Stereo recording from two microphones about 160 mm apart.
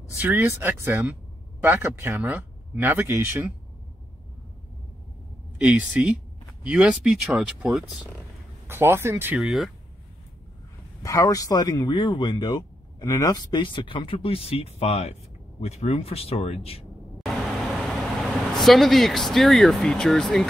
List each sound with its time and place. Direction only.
0.2 s speech: 15° right (ahead or behind)
5.6 s speech: 5° right (ahead or behind)
11.0 s speech: 20° left (ahead or behind); by 16.8 s 40° left (ahead or behind)
17.8 s speech: centre (ahead or behind)